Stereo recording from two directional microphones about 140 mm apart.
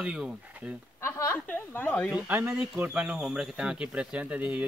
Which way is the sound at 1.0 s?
20° left (ahead or behind).